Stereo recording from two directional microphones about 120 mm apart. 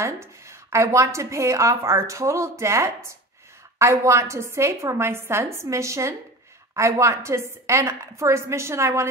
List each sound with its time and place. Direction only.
0.0 s a woman's voice: 25° right (ahead or behind)